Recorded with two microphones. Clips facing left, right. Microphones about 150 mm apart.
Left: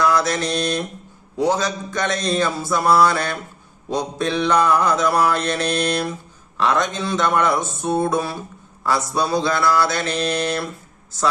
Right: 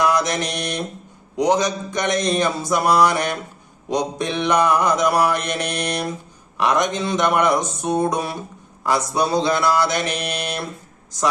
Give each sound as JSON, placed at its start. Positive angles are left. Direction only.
{"t": 0.0, "sound": "mantra", "side_deg": -20}